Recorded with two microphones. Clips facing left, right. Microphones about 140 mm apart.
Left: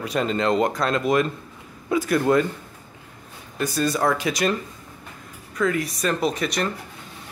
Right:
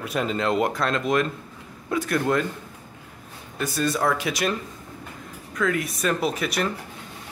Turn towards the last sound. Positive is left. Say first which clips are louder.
# left 1 dB
turn(degrees=-5)  # may be behind; listen again after turning